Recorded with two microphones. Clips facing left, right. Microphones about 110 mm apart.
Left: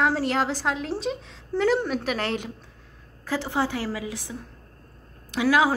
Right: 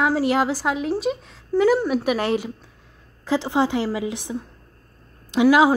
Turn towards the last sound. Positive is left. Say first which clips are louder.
# right 6 dB
turn(degrees=-20)  # may be behind; listen again after turning